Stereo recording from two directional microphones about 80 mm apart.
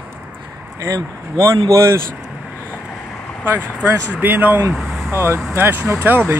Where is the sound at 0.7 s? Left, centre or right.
Right.